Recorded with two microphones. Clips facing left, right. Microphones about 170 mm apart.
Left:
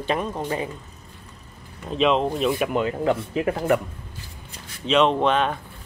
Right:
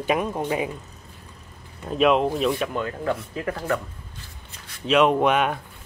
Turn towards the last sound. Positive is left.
turn(degrees=-10)  # may be behind; listen again after turning